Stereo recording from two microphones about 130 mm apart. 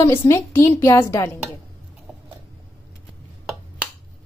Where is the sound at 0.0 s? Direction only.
20° left (ahead or behind).